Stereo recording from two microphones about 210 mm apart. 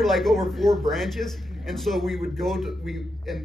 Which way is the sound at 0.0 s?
Centre (ahead or behind).